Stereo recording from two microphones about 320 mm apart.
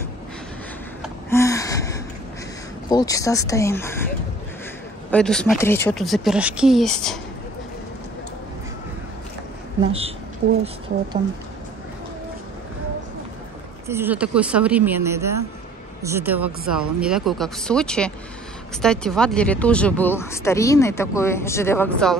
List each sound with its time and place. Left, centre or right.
1.0 s gasp: centre
2.9 s speech: centre
5.1 s speech: centre
9.8 s speech: centre
13.8 s speech: centre